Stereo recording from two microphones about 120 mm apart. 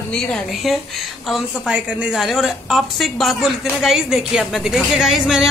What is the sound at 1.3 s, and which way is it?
A woman's voice, 10° right (ahead or behind).